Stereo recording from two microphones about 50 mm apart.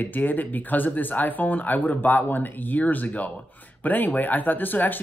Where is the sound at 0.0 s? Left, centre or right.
Left.